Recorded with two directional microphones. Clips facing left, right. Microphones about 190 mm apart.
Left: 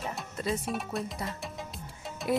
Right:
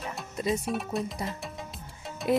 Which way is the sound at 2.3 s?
20° right (ahead or behind).